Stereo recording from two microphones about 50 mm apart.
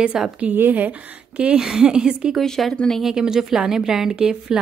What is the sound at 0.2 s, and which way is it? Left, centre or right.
Speech, centre.